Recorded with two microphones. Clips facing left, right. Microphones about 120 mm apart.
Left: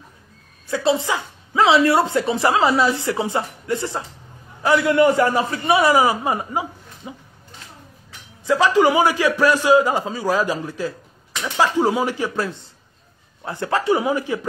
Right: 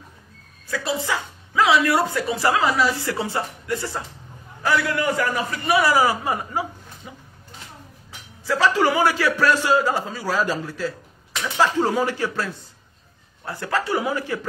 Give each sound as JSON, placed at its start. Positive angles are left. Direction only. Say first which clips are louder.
{"t": 0.7, "sound": "a woman's voice", "louder": "left 5 dB", "side_deg": 25}
{"t": 8.5, "sound": "a man's voice", "louder": "left 4 dB", "side_deg": 15}
{"t": 13.5, "sound": "a woman's voice", "louder": "left 4 dB", "side_deg": 25}